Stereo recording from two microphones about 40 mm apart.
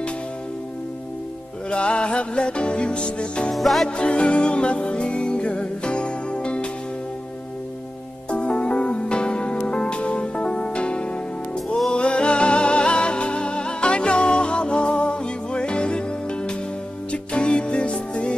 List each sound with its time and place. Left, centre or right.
1.7 s music: left
3.5 s music: centre
3.9 s music: left
8.3 s music: left